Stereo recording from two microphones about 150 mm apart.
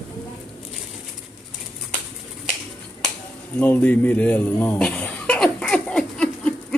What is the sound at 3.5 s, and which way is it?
Chuckle, 10° left (ahead or behind).